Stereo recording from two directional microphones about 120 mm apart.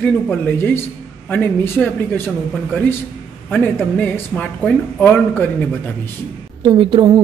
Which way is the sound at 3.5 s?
15° left (ahead or behind).